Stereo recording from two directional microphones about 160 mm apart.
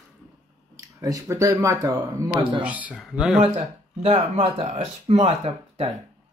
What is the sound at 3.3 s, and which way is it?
Speech, 40° right (ahead or behind).